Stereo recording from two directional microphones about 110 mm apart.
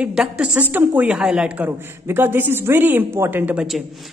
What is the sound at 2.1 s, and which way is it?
A woman's voice, 20° right (ahead or behind).